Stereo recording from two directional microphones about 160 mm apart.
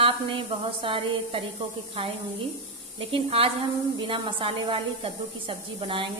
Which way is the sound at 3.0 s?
35° right (ahead or behind).